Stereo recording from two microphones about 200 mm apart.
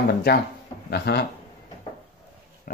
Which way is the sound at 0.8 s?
55° left (ahead or behind).